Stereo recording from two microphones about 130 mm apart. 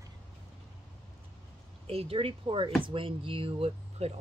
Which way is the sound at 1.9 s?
45° right (ahead or behind).